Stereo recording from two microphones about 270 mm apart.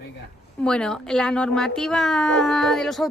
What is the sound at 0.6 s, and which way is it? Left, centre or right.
Speech, centre.